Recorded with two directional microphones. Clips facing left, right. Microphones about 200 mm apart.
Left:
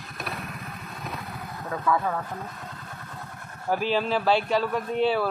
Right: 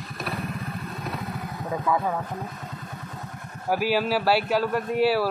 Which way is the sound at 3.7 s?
10° right (ahead or behind).